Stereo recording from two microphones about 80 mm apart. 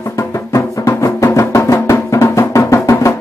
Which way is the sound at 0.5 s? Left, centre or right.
Left.